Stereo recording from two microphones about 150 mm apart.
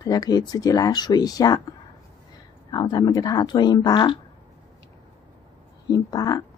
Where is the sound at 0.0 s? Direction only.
25° left (ahead or behind).